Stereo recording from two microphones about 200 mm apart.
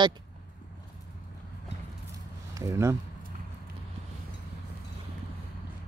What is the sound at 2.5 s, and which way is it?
Speech, 15° right (ahead or behind).